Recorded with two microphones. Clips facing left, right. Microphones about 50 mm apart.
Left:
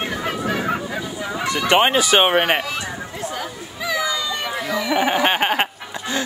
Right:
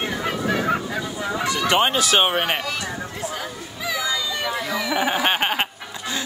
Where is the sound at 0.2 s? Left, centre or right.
Centre.